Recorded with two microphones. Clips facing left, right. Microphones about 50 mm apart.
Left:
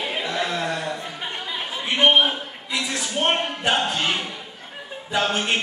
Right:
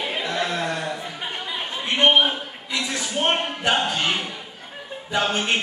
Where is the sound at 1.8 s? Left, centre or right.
Centre.